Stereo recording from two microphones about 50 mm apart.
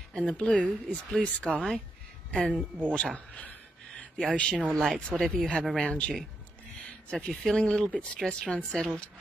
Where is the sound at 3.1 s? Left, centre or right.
Left.